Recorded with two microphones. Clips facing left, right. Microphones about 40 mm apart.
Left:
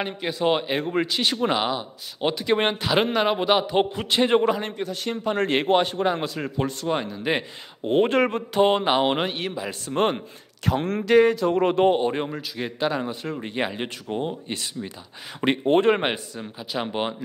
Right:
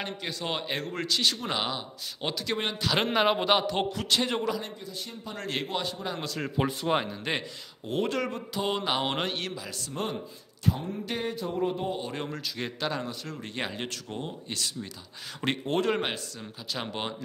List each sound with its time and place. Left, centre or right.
0.0 s speech: centre
1.5 s speech: centre
3.1 s a man's voice: centre
3.6 s speech: left
4.7 s a man's voice: left
6.6 s speech: centre
7.8 s speech: left; by 9.6 s centre
9.6 s a man's voice: left
9.9 s speech: left
10.7 s speech: left
12.0 s speech: left
12.3 s a man's voice: centre; by 16.4 s left
16.7 s a man's voice: centre